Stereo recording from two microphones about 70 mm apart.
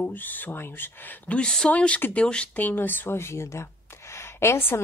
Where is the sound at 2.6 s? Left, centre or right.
Left.